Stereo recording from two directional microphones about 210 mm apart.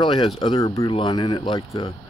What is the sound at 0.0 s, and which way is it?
Speech, 25° left (ahead or behind).